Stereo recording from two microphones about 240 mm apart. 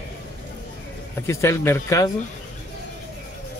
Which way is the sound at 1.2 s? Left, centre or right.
Centre.